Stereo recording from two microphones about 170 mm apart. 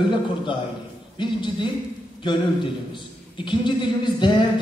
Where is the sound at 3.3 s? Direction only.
30° left (ahead or behind).